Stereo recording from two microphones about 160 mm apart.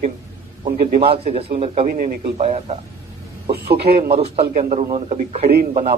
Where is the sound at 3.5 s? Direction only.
80° right.